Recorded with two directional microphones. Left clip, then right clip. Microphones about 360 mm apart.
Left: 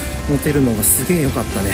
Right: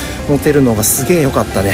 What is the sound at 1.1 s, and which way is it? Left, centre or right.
Speech, centre.